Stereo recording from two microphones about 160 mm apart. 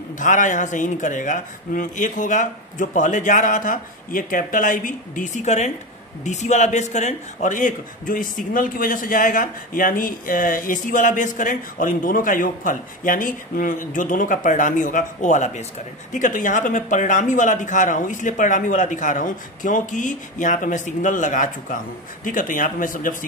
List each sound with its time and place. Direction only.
0.2 s a man's voice: 50° left (ahead or behind)